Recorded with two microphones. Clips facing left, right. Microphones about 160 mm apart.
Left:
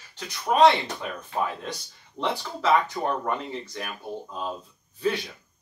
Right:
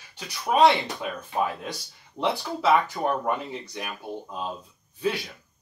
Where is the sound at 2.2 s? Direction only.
15° right (ahead or behind).